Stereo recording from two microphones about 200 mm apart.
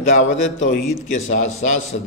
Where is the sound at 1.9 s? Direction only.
45° left (ahead or behind).